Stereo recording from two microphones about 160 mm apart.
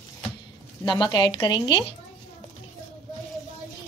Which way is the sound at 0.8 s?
25° left (ahead or behind).